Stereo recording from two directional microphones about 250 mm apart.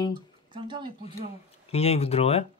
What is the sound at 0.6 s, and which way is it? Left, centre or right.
Speech, centre.